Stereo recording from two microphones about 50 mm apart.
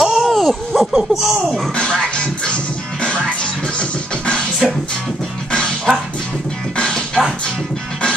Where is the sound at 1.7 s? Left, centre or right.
Centre.